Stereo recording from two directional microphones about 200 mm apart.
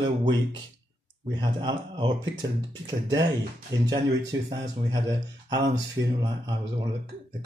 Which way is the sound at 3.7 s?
15° right (ahead or behind).